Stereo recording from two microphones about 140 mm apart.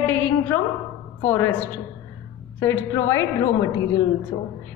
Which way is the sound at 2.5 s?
20° left (ahead or behind).